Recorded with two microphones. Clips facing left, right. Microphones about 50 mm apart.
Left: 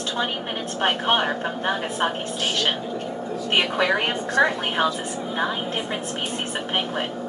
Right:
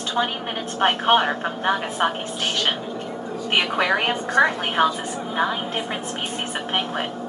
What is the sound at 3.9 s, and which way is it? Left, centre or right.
A woman's voice, centre.